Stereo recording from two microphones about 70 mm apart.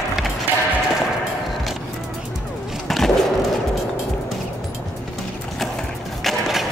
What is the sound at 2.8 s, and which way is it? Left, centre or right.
Skateboard, centre.